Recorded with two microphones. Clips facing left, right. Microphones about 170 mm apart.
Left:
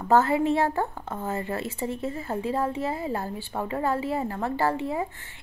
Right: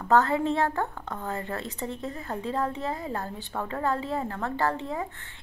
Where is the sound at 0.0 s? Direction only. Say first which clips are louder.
Left 2 dB; 10° left (ahead or behind).